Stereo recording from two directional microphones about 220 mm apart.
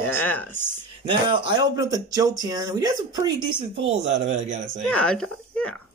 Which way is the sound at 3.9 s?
30° right (ahead or behind).